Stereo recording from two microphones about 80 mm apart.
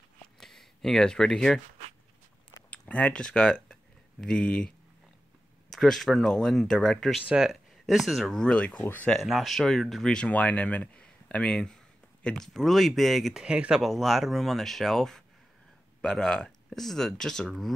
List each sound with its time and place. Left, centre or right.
0.4 s speech: centre
2.9 s speech: centre
8.4 s speech: centre
9.2 s speech: centre